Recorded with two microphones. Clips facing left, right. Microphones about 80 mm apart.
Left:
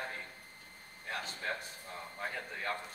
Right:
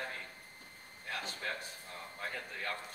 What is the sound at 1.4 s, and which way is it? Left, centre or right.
A man's voice, left.